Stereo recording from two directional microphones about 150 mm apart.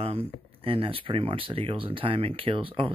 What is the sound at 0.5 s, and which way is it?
Speech, 35° right (ahead or behind).